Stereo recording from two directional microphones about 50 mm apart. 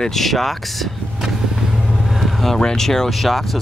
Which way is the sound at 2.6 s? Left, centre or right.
Centre.